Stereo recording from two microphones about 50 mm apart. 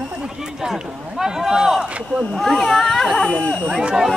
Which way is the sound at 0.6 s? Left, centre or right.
Centre.